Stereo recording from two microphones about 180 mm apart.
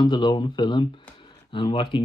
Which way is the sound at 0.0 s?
25° left (ahead or behind).